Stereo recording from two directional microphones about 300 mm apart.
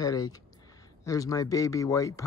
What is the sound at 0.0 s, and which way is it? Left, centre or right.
Speech, centre.